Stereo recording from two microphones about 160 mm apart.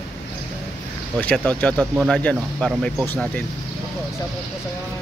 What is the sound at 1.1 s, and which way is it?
Speech, 5° left (ahead or behind).